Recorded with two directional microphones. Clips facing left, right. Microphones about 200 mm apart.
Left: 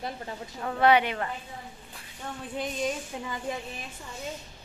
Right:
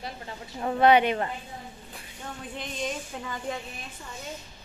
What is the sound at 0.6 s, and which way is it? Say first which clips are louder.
Speech: right 2 dB; 25° right (ahead or behind).